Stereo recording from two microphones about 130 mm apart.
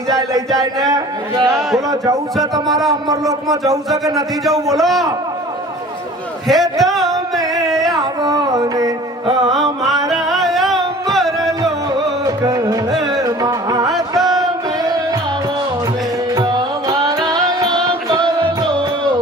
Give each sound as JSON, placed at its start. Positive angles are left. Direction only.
{"t": 0.7, "sound": "speech", "side_deg": -30}
{"t": 4.7, "sound": "a man's voice", "side_deg": 0}
{"t": 6.4, "sound": "a sound", "side_deg": 0}
{"t": 8.0, "sound": "carnatic music", "side_deg": -30}
{"t": 9.5, "sound": "music", "side_deg": 0}
{"t": 11.6, "sound": "music", "side_deg": -30}
{"t": 12.9, "sound": "music", "side_deg": 0}
{"t": 13.2, "sound": "music", "side_deg": -30}
{"t": 16.3, "sound": "music", "side_deg": -30}